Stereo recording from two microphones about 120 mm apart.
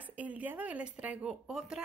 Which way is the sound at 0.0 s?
10° right (ahead or behind).